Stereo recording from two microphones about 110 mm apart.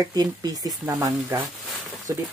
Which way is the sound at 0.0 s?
35° right (ahead or behind).